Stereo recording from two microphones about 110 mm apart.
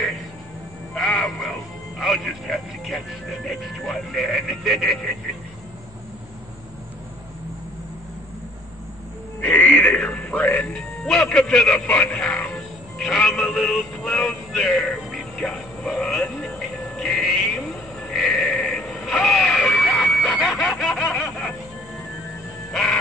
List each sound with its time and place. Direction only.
0.9 s frog: centre (ahead or behind)
2.0 s speech: centre (ahead or behind)
9.4 s music: 15° left (ahead or behind)
9.9 s music: 5° left (ahead or behind)
22.7 s music: 5° left (ahead or behind)